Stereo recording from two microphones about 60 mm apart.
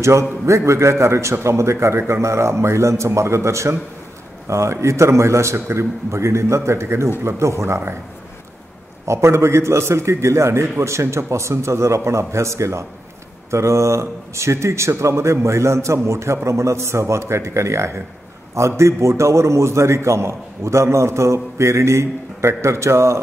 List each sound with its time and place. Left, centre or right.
0.0 s speech: right
9.0 s speech: right